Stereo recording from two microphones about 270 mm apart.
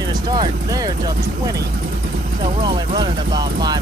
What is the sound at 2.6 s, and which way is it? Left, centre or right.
Speech, centre.